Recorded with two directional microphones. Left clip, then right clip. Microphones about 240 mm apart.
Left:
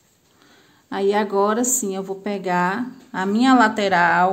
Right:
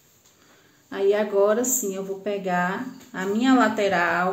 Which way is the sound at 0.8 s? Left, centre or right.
Left.